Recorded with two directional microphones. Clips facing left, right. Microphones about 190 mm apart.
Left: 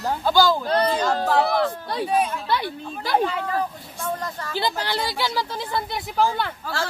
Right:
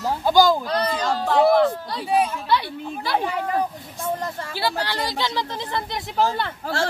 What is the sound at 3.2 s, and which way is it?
Speech, 15° right (ahead or behind).